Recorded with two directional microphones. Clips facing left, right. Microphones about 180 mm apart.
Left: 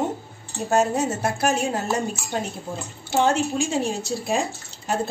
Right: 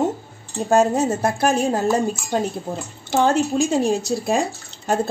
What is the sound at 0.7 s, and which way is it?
A woman's voice, 50° right (ahead or behind).